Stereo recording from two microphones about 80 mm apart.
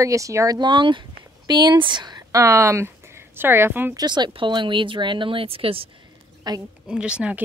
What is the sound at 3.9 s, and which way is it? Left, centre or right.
Speech, right.